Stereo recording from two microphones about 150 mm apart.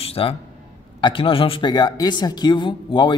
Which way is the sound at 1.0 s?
35° left (ahead or behind).